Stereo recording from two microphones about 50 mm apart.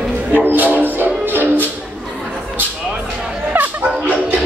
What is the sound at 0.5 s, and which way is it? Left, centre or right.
Music, right.